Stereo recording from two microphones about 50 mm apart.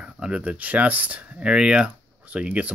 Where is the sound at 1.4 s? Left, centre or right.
Centre.